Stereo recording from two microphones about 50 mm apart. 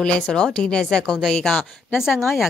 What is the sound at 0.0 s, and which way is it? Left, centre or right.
Speech, centre.